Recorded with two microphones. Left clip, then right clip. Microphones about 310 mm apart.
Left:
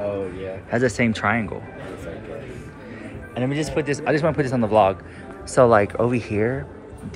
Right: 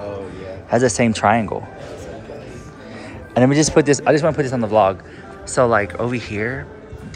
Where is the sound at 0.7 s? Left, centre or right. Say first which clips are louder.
Right 5 dB; centre.